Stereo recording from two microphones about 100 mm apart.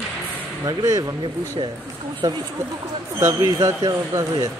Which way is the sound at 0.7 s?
35° right (ahead or behind).